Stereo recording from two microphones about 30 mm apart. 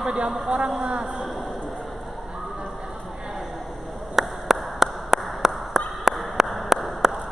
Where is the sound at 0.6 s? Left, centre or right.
Right.